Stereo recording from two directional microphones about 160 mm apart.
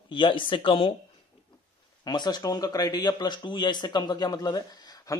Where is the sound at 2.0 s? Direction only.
25° left (ahead or behind).